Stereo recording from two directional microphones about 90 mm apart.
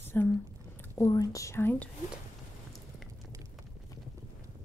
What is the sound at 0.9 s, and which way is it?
Speech, 40° left (ahead or behind).